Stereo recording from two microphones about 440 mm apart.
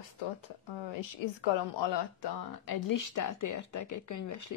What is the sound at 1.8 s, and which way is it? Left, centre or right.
Speech, left.